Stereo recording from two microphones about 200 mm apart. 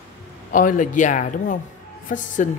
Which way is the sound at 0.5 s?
40° left (ahead or behind).